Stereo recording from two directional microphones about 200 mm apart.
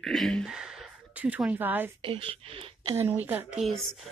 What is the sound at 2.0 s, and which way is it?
Speech, 25° right (ahead or behind).